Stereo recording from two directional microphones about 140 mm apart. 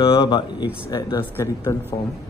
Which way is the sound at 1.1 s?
25° left (ahead or behind).